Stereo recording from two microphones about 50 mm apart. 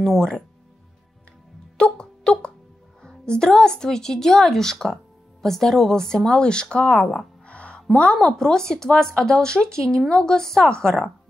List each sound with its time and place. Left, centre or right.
0.0 s speech: centre
1.8 s music: centre
3.0 s speech: centre
7.4 s music: left
7.9 s speech: centre